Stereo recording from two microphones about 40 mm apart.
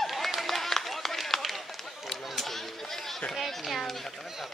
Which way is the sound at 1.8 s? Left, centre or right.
Centre.